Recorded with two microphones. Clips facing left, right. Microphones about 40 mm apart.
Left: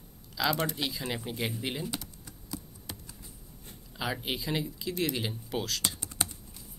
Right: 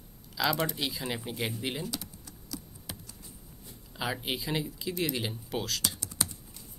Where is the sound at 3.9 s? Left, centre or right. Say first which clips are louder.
Even; centre.